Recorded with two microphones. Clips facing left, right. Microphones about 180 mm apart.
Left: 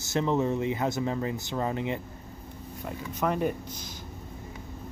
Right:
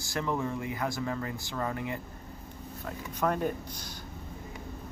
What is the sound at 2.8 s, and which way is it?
Speech, 10° left (ahead or behind).